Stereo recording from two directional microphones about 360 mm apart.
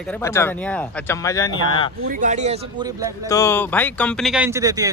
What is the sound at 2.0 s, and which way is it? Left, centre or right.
Speech, right.